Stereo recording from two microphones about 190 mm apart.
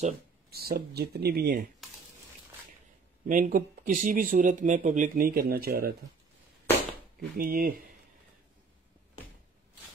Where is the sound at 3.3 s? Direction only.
45° right (ahead or behind).